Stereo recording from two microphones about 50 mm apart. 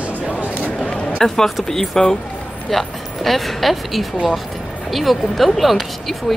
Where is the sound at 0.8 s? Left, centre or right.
Centre.